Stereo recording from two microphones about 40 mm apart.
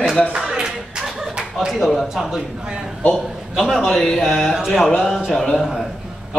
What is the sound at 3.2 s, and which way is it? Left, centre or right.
Speech, centre.